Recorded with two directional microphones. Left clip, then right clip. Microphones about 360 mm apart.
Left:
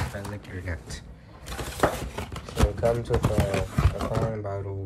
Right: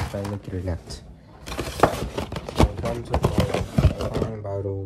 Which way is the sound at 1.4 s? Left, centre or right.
Centre.